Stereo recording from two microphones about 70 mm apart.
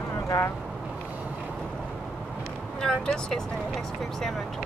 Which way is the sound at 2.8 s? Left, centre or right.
Centre.